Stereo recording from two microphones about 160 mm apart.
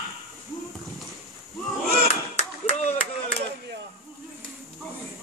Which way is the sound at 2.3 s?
45° left (ahead or behind).